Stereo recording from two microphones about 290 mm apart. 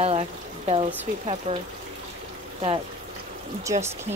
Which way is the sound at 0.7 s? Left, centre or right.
Centre.